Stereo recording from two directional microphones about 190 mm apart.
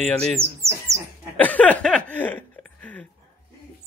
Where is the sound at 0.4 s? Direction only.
15° right (ahead or behind).